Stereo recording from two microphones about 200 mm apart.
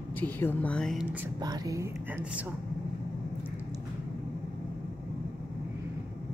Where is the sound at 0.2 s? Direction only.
10° left (ahead or behind).